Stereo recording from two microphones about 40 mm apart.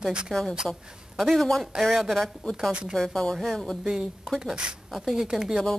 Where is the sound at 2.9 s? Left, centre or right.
Centre.